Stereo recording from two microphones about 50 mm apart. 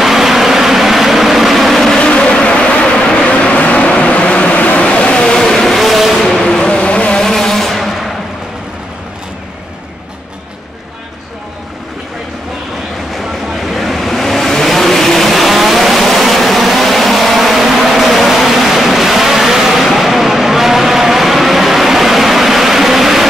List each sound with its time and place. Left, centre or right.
0.0 s vehicle: centre
2.0 s vehicle: centre
5.4 s vehicle: centre
6.6 s vehicle: left
7.2 s vehicle: centre
13.1 s vehicle: centre